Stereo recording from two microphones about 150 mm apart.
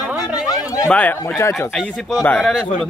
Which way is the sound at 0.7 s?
10° left (ahead or behind).